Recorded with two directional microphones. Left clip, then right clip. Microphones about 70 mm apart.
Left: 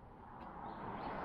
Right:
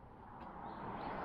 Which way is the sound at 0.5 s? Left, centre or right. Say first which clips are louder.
Even; right.